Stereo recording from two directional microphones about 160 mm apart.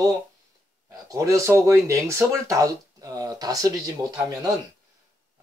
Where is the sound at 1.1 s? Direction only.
20° right (ahead or behind).